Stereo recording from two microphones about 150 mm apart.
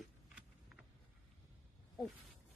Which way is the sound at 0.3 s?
5° right (ahead or behind).